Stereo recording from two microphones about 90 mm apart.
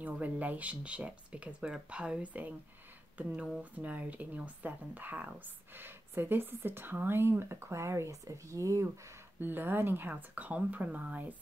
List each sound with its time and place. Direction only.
0.0 s speech: 20° right (ahead or behind); by 8.8 s 35° right (ahead or behind)
9.4 s speech: 25° right (ahead or behind)